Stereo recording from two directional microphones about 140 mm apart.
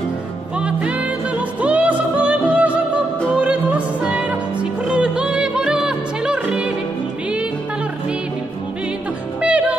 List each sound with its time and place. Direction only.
0.6 s music: 10° right (ahead or behind)
9.4 s music: 10° right (ahead or behind)